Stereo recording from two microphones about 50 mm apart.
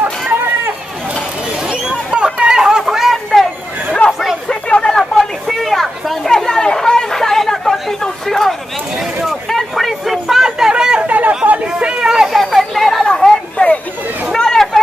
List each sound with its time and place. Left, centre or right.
1.7 s chatter: centre
4.0 s chatter: left
5.5 s chatter: centre
9.5 s a sound: centre
11.1 s chatter: right
12.3 s chatter: centre
14.3 s a sound: centre